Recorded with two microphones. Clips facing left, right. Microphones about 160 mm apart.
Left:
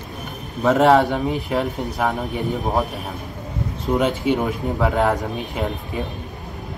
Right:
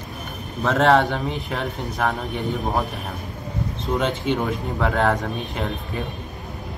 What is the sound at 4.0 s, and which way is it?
Speech, 5° left (ahead or behind).